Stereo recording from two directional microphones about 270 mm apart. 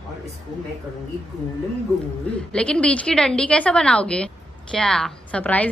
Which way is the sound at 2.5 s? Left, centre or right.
Centre.